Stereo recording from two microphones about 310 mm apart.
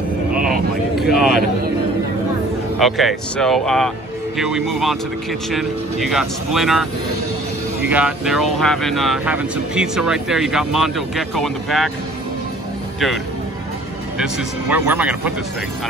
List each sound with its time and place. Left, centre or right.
0.9 s speech: centre
2.8 s speech: centre
14.1 s speech: centre